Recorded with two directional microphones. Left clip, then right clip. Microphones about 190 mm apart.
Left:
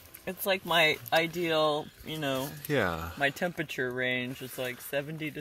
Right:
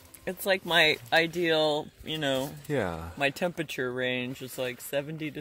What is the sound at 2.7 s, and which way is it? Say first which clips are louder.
Speech: left 4 dB; 5° right (ahead or behind).